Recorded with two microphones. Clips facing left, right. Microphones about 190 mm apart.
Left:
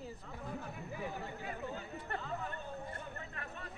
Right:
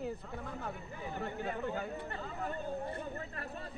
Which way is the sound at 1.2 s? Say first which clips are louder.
Right 6 dB; 65° right (ahead or behind).